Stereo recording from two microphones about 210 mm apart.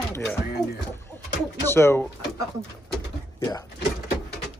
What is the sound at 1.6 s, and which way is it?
Speech, 10° left (ahead or behind).